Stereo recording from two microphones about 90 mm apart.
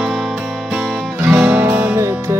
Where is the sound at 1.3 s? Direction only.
15° right (ahead or behind).